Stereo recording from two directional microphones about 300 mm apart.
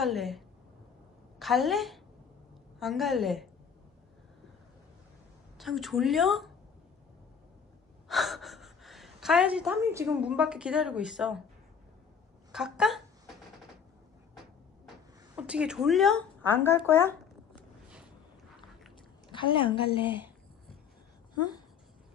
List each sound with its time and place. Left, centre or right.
0.0 s a woman's voice: centre
1.4 s a woman's voice: centre
5.6 s a woman's voice: centre
8.1 s speech: centre
12.5 s a woman's voice: centre
15.3 s speech: centre
19.2 s a woman's voice: centre